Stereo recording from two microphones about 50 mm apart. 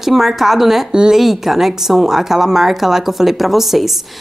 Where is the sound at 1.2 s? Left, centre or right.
Centre.